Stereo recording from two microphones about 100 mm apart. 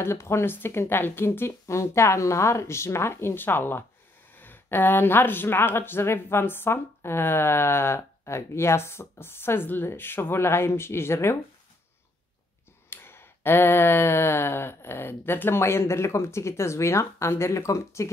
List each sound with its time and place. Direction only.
0.0 s speech: 25° left (ahead or behind)
12.9 s speech: 25° left (ahead or behind)